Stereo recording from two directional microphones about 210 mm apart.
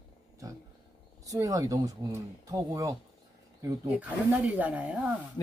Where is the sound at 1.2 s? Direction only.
15° right (ahead or behind).